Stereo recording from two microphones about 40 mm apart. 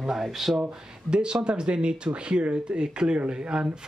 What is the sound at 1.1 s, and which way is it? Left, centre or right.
Speech, right.